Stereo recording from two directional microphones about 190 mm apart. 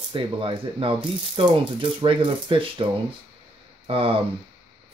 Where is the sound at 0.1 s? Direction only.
25° right (ahead or behind).